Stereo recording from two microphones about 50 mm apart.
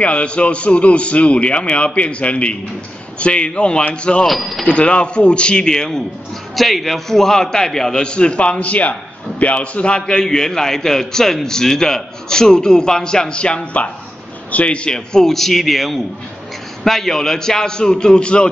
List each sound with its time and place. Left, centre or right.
0.0 s speech: left
4.3 s speech: centre
4.6 s a man's voice: left